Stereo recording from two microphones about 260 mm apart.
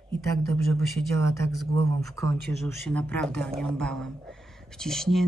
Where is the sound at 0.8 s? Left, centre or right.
Centre.